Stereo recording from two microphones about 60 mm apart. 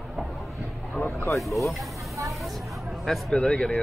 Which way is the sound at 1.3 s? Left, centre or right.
Centre.